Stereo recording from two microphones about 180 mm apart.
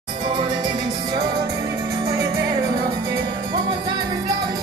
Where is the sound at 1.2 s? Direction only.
65° right (ahead or behind).